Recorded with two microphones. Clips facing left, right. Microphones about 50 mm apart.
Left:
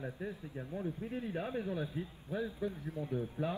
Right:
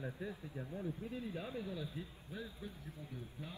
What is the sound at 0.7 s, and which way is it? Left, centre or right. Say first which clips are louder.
Speech: left 5 dB; left.